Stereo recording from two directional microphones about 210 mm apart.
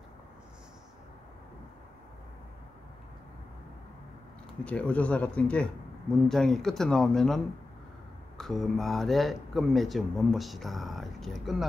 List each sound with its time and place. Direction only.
4.6 s speech: 5° left (ahead or behind)